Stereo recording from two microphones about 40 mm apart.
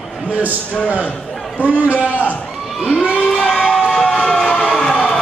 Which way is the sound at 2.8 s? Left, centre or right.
Right.